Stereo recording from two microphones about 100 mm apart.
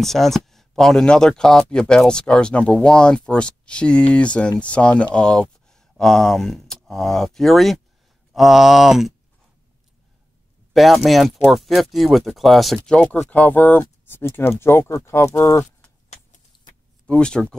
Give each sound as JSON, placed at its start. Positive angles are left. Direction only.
{"t": 0.0, "sound": "speech", "side_deg": 0}
{"t": 10.7, "sound": "speech", "side_deg": 0}
{"t": 17.0, "sound": "speech", "side_deg": 10}